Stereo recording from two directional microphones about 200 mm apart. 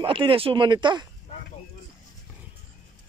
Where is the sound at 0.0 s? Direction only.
25° right (ahead or behind).